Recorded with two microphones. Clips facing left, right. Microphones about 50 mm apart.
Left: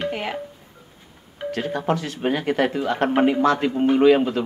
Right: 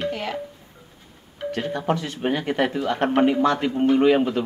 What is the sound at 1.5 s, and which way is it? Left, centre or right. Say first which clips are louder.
Speech: left 1 dB; left.